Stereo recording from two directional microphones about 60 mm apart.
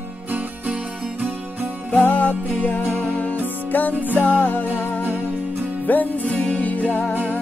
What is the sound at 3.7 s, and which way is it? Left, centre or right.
Music, left.